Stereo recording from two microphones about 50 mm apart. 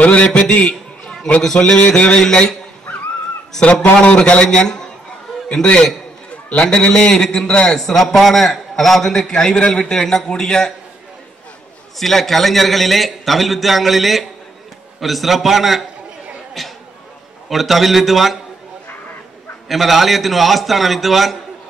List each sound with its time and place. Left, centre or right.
0.0 s a man's voice: left
3.6 s a man's voice: left
12.0 s a man's voice: centre
16.6 s chatter: centre
17.5 s a man's voice: centre
19.7 s a man's voice: centre